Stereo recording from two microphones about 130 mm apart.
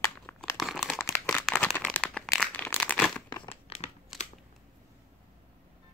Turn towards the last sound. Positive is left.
turn(degrees=0)  # may be behind; listen again after turning